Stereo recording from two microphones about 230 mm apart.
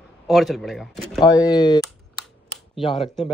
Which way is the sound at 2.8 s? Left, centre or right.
Left.